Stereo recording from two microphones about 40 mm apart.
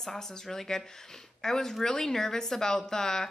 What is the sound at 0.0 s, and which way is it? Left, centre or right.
Speech, centre.